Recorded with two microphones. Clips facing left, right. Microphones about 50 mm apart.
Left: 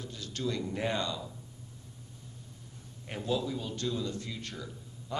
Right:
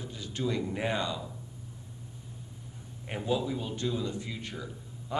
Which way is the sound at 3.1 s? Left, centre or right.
Centre.